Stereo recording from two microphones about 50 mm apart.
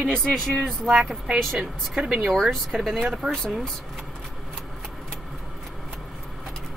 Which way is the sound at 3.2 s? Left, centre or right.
Centre.